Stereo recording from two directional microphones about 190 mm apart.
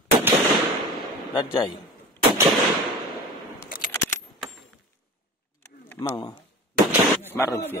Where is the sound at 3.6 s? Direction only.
45° left (ahead or behind).